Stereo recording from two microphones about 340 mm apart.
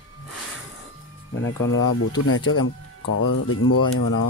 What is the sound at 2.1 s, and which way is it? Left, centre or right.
Speech, left.